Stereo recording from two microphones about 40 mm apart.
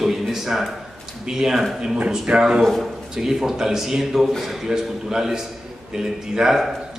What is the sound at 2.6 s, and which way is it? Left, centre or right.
Speech, centre.